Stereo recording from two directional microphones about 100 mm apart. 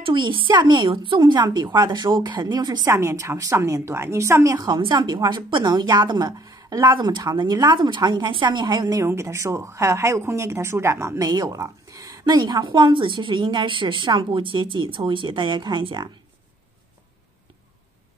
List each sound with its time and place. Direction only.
0.0 s speech: 55° right (ahead or behind)
2.9 s a woman's voice: 30° right (ahead or behind)
4.6 s speech: 45° right (ahead or behind)
7.0 s speech: 50° right (ahead or behind)
9.0 s speech: 30° right (ahead or behind); by 16.1 s 50° right (ahead or behind)